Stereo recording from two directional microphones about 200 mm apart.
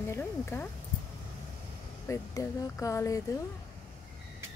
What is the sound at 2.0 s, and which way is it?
Speech, 15° left (ahead or behind).